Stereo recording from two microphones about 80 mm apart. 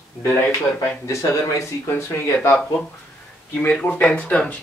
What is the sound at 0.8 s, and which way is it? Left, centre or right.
Speech, left.